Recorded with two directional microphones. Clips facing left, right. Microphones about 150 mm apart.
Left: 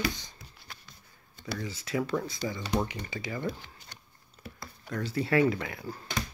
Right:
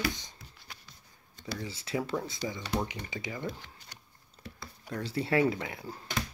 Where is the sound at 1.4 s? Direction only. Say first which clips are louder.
Left 2 dB; 30° right (ahead or behind).